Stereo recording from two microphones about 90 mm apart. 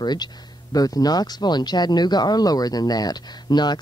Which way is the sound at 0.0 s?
50° left (ahead or behind).